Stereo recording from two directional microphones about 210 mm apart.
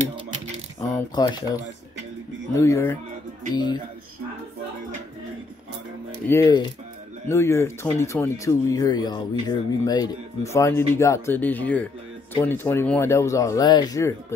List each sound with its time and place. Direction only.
0.7 s speech: 20° left (ahead or behind)
6.2 s speech: 5° left (ahead or behind)